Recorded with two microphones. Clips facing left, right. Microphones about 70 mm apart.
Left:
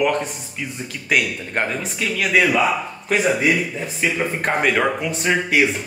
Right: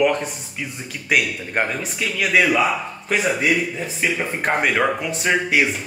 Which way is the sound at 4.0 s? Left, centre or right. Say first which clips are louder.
Left 2 dB; centre.